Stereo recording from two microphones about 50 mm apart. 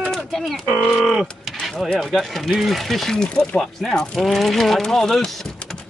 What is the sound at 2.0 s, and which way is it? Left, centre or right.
Speech, centre.